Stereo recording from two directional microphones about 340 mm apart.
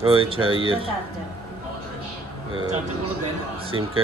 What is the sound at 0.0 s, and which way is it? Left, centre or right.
Speech, centre.